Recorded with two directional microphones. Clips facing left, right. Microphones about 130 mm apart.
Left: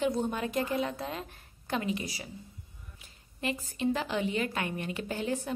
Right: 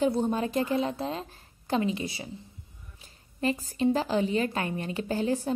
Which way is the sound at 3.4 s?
35° right (ahead or behind).